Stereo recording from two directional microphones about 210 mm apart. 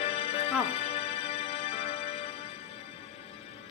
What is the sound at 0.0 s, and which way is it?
Music, 25° left (ahead or behind).